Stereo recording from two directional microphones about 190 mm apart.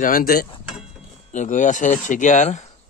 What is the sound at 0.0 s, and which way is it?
Speech, 50° left (ahead or behind).